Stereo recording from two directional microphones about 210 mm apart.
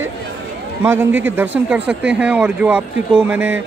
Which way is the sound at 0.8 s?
10° right (ahead or behind).